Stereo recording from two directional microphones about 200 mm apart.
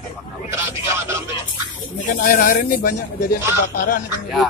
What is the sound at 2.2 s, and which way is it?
Speech, 50° left (ahead or behind).